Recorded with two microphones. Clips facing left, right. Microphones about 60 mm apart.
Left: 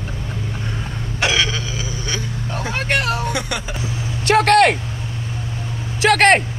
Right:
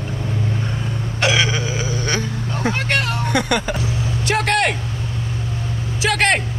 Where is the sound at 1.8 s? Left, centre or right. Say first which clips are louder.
Right 4 dB; right.